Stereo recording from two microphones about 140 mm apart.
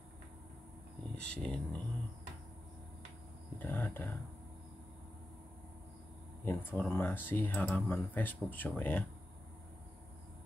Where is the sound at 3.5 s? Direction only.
15° left (ahead or behind).